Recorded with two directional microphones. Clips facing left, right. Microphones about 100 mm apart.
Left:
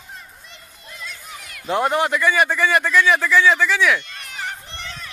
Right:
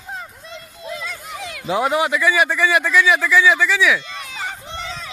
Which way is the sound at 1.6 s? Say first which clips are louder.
Right 1 dB; 5° right (ahead or behind).